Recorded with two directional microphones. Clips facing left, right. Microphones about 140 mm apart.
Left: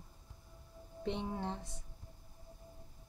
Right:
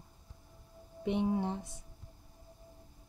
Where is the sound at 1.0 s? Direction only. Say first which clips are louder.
Right 7 dB; 15° right (ahead or behind).